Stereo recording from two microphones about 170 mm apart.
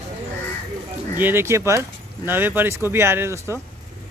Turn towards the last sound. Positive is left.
turn(degrees=-15)  # may be behind; listen again after turning